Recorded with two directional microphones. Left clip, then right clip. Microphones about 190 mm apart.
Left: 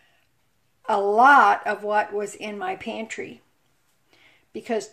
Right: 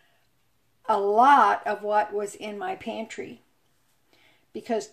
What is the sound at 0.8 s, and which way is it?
A woman's voice, 5° left (ahead or behind).